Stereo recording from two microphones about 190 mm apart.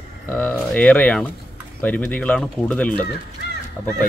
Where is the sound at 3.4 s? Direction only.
60° left (ahead or behind).